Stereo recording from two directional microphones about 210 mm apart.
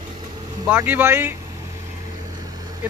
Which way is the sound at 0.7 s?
10° right (ahead or behind).